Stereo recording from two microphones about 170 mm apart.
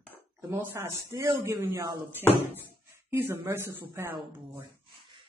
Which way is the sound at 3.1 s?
15° right (ahead or behind).